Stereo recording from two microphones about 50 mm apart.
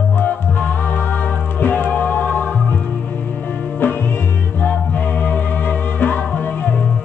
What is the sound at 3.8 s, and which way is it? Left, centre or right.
Music, left.